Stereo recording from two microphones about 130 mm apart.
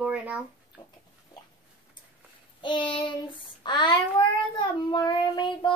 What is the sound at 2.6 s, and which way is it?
Child singing, 40° left (ahead or behind).